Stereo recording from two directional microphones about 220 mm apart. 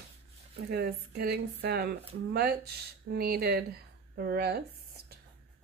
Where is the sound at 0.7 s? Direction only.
45° right (ahead or behind).